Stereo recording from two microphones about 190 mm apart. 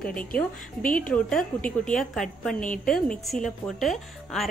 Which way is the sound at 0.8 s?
45° left (ahead or behind).